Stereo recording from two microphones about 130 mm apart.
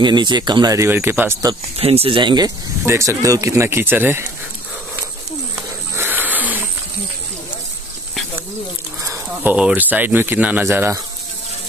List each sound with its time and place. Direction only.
0.0 s speech: 35° right (ahead or behind); by 1.4 s 15° right (ahead or behind)
1.8 s speech: 50° right (ahead or behind)
2.8 s speech: 20° right (ahead or behind)
5.9 s a sound: 15° right (ahead or behind)
9.0 s a sound: 25° right (ahead or behind)
9.5 s speech: 10° right (ahead or behind)